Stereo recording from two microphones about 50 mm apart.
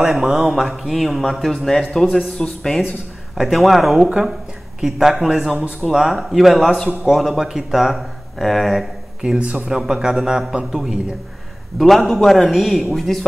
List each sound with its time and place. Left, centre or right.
0.0 s speech: centre
3.3 s speech: centre
9.2 s speech: right
11.8 s speech: centre